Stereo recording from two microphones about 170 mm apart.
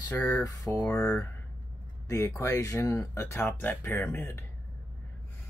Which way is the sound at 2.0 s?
15° left (ahead or behind).